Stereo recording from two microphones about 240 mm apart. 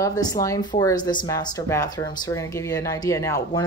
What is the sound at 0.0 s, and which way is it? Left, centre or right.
Speech, centre.